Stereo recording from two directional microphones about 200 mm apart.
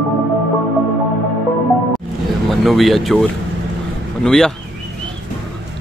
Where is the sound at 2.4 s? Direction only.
Centre (ahead or behind).